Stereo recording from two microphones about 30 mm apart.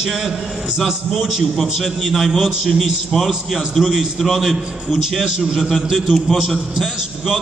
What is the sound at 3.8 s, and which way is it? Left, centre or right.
Mantra, centre.